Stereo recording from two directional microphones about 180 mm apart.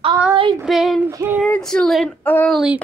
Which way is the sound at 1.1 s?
10° right (ahead or behind).